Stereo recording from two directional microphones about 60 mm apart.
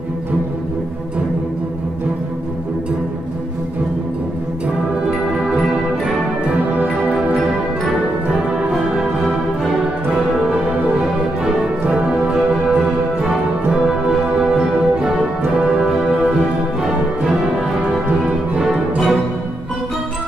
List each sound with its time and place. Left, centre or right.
6.4 s music: right
8.5 s music: centre
11.9 s music: centre
18.6 s music: centre